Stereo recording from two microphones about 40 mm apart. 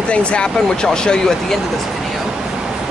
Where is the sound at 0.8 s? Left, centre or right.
Centre.